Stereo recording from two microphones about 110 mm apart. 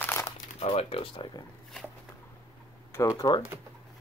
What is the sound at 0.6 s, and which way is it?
Speech, 60° left (ahead or behind).